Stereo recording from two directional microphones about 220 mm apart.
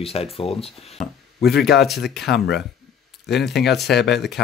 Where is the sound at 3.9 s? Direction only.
Centre (ahead or behind).